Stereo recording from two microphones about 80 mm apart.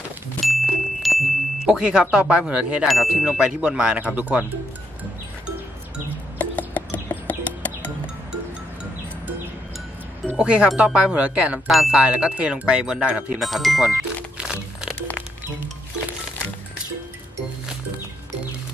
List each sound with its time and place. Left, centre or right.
0.4 s chime: centre
1.8 s speech: centre
2.9 s speech: centre
6.3 s music: centre
10.3 s speech: centre
11.7 s speech: centre
13.4 s music: centre